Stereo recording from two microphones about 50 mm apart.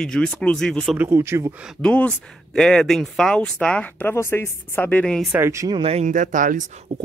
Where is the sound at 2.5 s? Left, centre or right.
Centre; by 4.0 s left.